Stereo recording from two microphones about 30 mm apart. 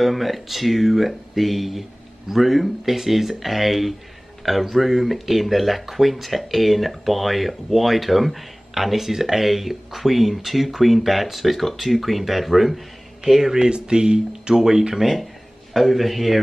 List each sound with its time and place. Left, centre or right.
0.0 s speech: centre
13.6 s speech: right
15.0 s speech: centre